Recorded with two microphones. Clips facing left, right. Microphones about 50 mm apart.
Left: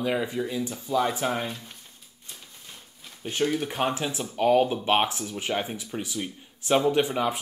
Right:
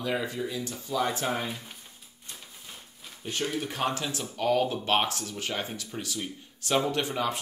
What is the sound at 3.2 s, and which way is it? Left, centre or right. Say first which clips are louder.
Speech: left 5 dB; centre.